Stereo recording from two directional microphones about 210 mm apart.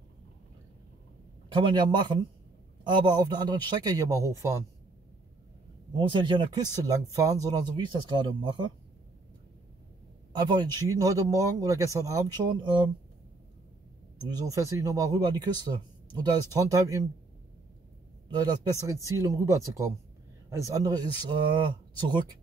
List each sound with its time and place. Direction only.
1.5 s speech: 20° right (ahead or behind)
5.9 s speech: 20° right (ahead or behind)
10.4 s speech: 20° right (ahead or behind)
14.3 s speech: 15° right (ahead or behind)
18.3 s speech: 20° right (ahead or behind)